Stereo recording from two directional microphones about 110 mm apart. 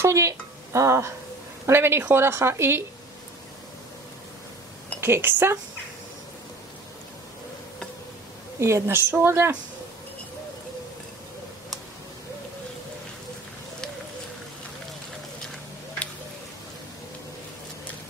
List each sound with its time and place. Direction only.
0.0 s a woman's voice: 25° right (ahead or behind)
5.0 s a woman's voice: 20° right (ahead or behind)
8.5 s a woman's voice: 25° right (ahead or behind)